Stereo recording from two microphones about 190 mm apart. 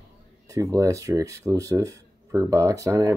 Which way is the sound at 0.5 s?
15° right (ahead or behind).